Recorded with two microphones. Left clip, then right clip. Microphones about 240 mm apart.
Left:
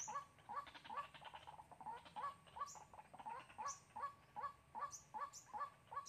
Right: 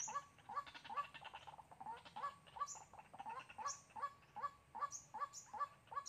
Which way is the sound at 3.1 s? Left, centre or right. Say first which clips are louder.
Right 2 dB; right.